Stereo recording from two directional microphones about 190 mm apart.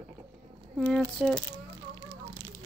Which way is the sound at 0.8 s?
5° left (ahead or behind).